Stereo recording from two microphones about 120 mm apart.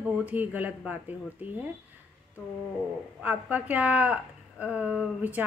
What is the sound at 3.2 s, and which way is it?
A woman's voice, 15° right (ahead or behind).